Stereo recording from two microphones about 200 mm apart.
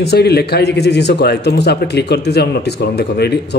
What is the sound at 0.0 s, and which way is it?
Speech, 55° left (ahead or behind).